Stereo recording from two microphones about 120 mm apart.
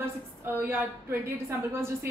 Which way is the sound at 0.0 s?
20° right (ahead or behind).